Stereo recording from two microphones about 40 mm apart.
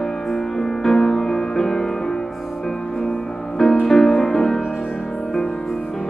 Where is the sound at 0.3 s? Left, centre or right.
Centre.